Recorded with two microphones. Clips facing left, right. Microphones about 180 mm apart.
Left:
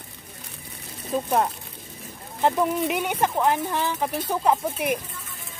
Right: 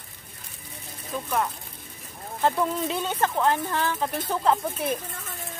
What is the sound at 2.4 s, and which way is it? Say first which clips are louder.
Speech: left 2 dB; 15° left (ahead or behind).